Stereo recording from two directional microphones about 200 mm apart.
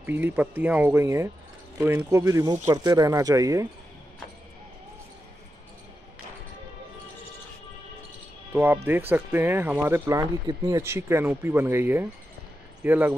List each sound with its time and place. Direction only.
0.0 s speech: 10° right (ahead or behind)
8.8 s speech: 10° right (ahead or behind)